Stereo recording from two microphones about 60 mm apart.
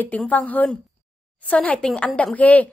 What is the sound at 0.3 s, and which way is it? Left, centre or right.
A woman's voice, left.